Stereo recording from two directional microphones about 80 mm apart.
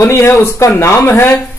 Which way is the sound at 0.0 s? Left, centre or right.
Left.